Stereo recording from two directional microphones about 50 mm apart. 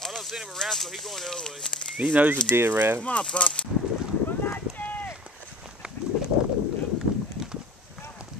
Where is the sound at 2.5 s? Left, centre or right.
Right.